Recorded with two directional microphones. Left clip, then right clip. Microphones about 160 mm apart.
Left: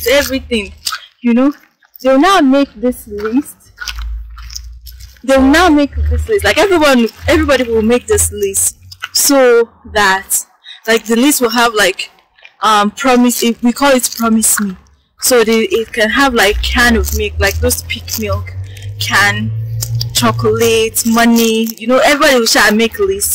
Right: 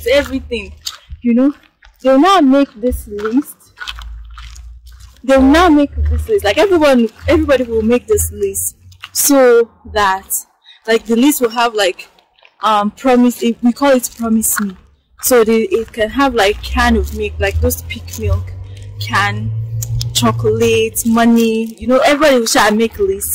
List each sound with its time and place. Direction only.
0.0 s speech: 5° right (ahead or behind)
3.7 s biting: 10° left (ahead or behind)
5.5 s speech: centre (ahead or behind)
6.5 s speech: 5° left (ahead or behind)
9.3 s speech: 10° left (ahead or behind); by 18.5 s 5° right (ahead or behind)
18.9 s a sound: centre (ahead or behind)
20.5 s speech: 5° right (ahead or behind)